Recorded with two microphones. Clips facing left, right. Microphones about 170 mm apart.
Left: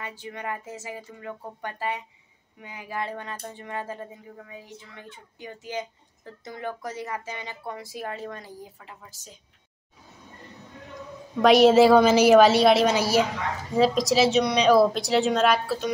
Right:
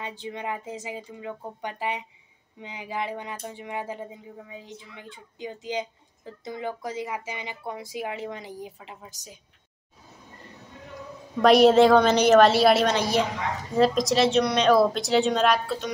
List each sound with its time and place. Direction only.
0.2 s speech: 20° right (ahead or behind)
11.4 s a woman's voice: centre (ahead or behind)